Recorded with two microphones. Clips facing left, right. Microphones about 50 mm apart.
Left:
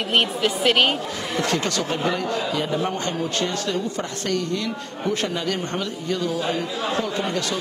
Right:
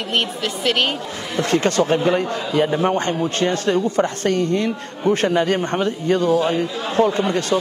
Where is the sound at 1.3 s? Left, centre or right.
Right.